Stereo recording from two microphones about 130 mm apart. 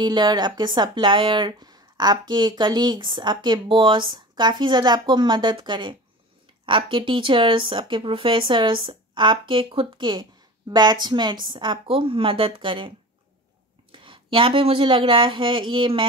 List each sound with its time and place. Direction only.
0.0 s speech: 35° right (ahead or behind)
13.9 s speech: 40° right (ahead or behind)